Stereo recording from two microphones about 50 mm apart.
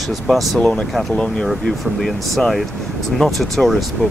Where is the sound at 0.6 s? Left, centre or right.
Centre.